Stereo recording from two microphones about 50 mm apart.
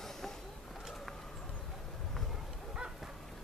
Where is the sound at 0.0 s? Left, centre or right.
Centre.